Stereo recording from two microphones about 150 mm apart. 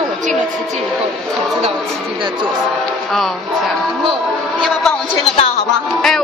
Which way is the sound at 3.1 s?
Centre (ahead or behind).